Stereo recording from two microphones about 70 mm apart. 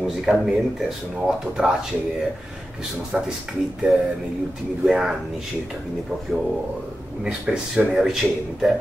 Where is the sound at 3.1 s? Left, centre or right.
Centre.